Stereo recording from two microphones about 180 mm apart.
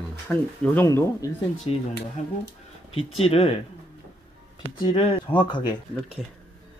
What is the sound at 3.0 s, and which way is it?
Speech, 35° left (ahead or behind).